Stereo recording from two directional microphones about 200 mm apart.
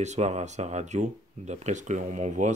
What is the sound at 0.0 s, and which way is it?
Speech, 35° right (ahead or behind).